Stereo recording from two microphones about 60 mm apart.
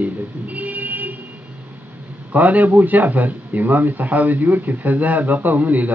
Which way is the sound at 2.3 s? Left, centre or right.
Right.